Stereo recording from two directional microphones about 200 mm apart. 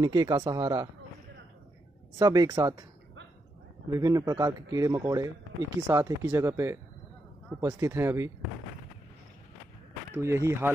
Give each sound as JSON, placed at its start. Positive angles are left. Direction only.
{"t": 0.0, "sound": "speech", "side_deg": -20}
{"t": 2.1, "sound": "speech", "side_deg": -20}
{"t": 3.9, "sound": "speech", "side_deg": -15}
{"t": 10.1, "sound": "speech", "side_deg": -15}